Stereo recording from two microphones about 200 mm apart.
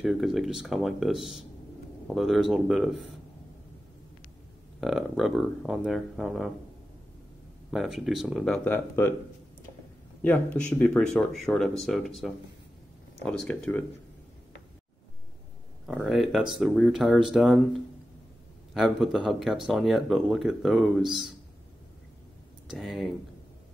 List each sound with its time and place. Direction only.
0.0 s speech: centre (ahead or behind)
4.7 s speech: centre (ahead or behind)
7.7 s speech: centre (ahead or behind)
10.2 s speech: 5° left (ahead or behind)
13.2 s speech: 5° left (ahead or behind)
15.9 s speech: 5° right (ahead or behind)
18.7 s speech: centre (ahead or behind)
22.7 s speech: centre (ahead or behind)